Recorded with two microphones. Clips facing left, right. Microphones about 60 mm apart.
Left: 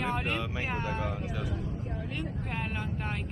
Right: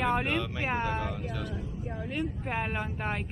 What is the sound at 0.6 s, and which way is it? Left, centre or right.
Speech, centre.